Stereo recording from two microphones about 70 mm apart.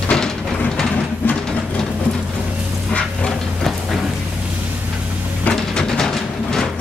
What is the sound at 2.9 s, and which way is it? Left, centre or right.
Vehicle, centre.